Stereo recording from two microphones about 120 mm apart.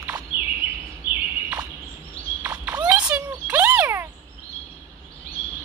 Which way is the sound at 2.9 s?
10° right (ahead or behind).